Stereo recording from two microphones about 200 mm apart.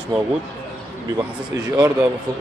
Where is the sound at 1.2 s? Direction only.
20° right (ahead or behind).